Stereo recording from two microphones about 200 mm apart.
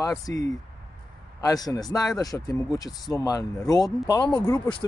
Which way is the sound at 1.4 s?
20° left (ahead or behind).